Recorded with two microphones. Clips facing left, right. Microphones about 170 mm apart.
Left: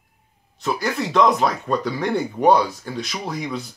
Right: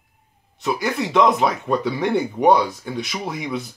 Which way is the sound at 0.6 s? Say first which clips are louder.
Right 1 dB; 20° right (ahead or behind).